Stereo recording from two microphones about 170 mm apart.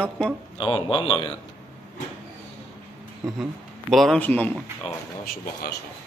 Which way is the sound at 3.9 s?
5° left (ahead or behind).